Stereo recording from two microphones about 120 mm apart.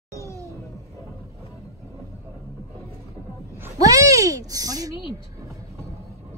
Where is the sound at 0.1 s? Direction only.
25° left (ahead or behind).